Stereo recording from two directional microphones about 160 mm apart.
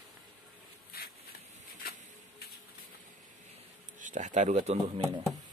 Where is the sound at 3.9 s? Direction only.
50° right (ahead or behind).